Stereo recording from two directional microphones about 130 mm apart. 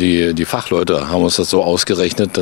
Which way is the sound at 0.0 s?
10° left (ahead or behind).